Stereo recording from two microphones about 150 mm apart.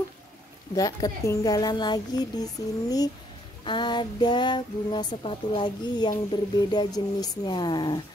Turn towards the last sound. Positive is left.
turn(degrees=30)  # may be behind; listen again after turning